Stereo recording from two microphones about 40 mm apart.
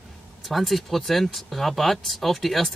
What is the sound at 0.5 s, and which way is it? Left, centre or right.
Speech, centre.